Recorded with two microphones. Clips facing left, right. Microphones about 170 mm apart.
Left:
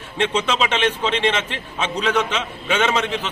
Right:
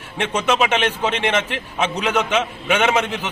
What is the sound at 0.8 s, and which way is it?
A man's voice, 15° right (ahead or behind).